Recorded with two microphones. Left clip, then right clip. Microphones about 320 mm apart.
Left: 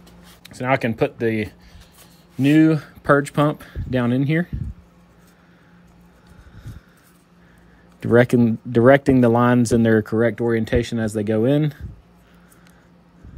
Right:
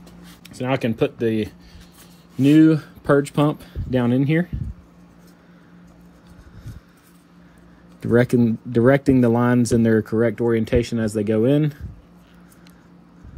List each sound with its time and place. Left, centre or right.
0.4 s speech: centre
8.0 s speech: left